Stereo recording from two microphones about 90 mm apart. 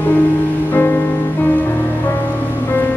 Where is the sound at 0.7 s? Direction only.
25° left (ahead or behind).